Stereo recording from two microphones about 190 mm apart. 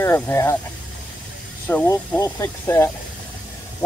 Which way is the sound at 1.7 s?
10° left (ahead or behind).